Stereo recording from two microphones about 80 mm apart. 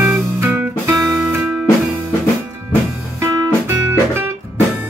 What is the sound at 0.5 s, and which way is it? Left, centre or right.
Music, right.